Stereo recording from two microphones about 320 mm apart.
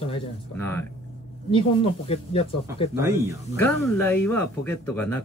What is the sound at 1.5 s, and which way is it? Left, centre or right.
Speech, centre.